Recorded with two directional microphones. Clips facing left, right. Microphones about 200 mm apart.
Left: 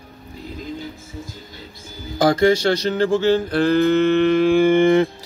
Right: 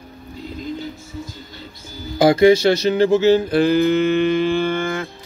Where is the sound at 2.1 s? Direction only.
10° right (ahead or behind).